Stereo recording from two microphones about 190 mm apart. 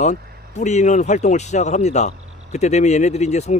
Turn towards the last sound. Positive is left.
turn(degrees=35)  # may be behind; listen again after turning